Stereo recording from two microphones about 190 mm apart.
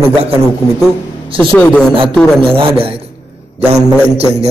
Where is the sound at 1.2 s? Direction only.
30° right (ahead or behind).